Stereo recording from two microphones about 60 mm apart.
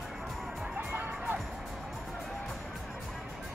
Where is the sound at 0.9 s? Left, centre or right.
Right.